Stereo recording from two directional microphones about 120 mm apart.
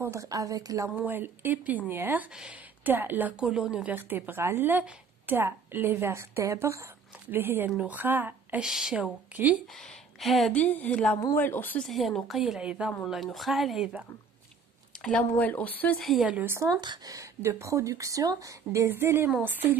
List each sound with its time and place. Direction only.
0.0 s speech: 25° right (ahead or behind)
0.8 s a woman's voice: 15° right (ahead or behind)
8.6 s a woman's voice: 5° right (ahead or behind)
10.2 s a woman's voice: centre (ahead or behind)
10.6 s speech: 10° left (ahead or behind)
11.1 s speech: 20° left (ahead or behind)
11.8 s a woman's voice: centre (ahead or behind)
15.0 s speech: 10° left (ahead or behind)
16.0 s a woman's voice: centre (ahead or behind)
16.3 s a woman's voice: 10° right (ahead or behind)
16.8 s speech: 35° right (ahead or behind); by 19.8 s 15° right (ahead or behind)